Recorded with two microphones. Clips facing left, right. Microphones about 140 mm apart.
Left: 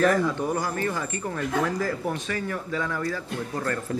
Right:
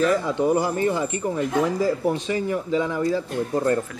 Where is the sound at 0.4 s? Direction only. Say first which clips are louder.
Right 6 dB; 20° right (ahead or behind).